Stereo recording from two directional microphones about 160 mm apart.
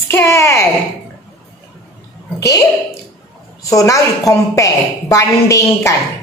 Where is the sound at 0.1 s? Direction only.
15° left (ahead or behind).